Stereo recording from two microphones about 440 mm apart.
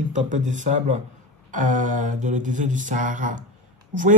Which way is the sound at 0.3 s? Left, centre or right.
Centre.